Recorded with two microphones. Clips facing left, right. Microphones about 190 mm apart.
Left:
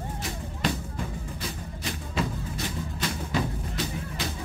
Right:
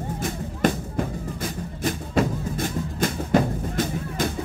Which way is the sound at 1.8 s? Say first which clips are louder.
Right 8 dB; 50° right (ahead or behind).